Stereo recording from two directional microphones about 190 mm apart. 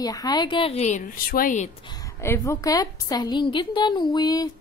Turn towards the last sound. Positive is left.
turn(degrees=20)  # may be behind; listen again after turning